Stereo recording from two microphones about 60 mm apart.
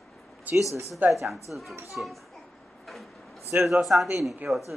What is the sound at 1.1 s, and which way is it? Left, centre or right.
Speech, centre.